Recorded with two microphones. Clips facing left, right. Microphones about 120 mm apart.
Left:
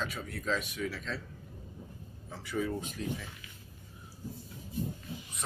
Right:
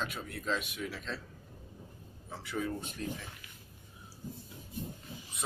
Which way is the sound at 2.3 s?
Centre (ahead or behind).